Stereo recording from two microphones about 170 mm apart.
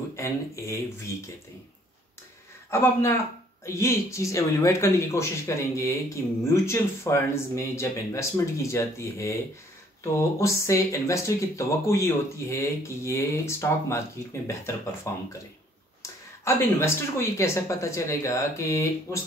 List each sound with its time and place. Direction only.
0.1 s speech: 15° left (ahead or behind)
2.7 s speech: 15° left (ahead or behind)
15.1 s speech: 15° left (ahead or behind)